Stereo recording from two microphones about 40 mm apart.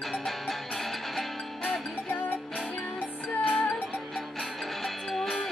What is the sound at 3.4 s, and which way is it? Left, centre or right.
Music, left.